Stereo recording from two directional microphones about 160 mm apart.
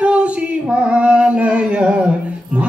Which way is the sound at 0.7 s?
5° right (ahead or behind).